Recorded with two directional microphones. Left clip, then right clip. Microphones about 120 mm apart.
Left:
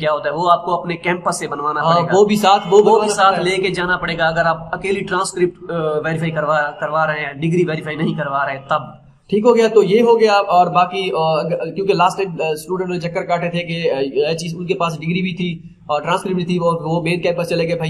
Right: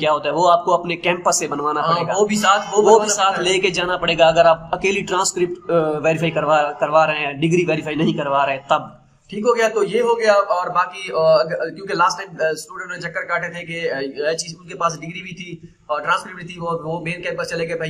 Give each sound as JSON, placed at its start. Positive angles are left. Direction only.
{"t": 0.0, "sound": "a man's voice", "side_deg": -20}
{"t": 2.1, "sound": "a man's voice", "side_deg": 30}
{"t": 3.1, "sound": "a man's voice", "side_deg": -20}
{"t": 9.3, "sound": "a man's voice", "side_deg": 30}